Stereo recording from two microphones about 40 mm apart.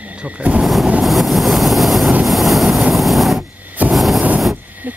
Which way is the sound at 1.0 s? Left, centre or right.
Centre.